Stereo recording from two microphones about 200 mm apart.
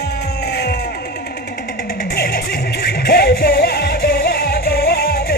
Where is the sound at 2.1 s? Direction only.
50° left (ahead or behind).